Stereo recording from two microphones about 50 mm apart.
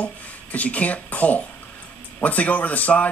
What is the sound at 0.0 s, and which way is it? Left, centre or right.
Speech, left.